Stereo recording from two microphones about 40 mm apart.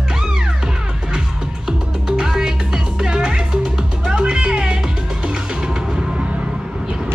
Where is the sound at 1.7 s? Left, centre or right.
Centre.